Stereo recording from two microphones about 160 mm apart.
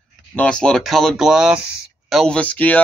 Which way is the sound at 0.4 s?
5° left (ahead or behind).